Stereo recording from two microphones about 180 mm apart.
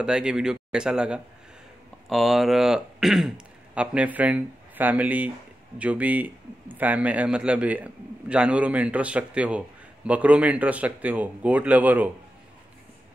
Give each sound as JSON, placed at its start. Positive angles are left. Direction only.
{"t": 0.0, "sound": "a man's voice", "side_deg": -5}